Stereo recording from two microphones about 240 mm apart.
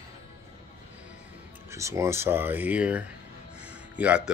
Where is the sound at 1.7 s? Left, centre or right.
Centre.